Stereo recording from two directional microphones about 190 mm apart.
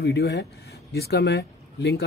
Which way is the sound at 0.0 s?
60° left (ahead or behind).